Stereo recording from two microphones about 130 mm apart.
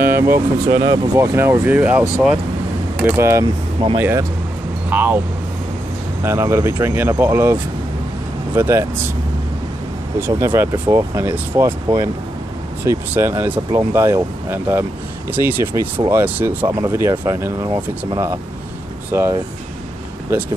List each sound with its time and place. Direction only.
0.0 s speech: 15° right (ahead or behind)
3.8 s speech: 35° right (ahead or behind)
4.8 s speech: 15° right (ahead or behind)
6.2 s speech: 20° right (ahead or behind)
10.2 s speech: 15° right (ahead or behind)